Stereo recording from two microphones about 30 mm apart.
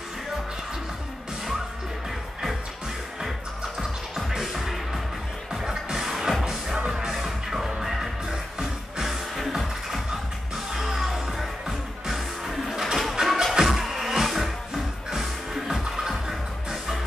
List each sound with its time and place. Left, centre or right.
4.3 s music: centre
5.5 s music: centre
8.3 s music: right
9.6 s music: centre